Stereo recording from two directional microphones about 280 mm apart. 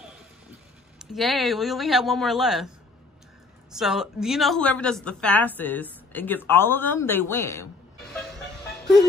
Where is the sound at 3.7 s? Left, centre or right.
Centre.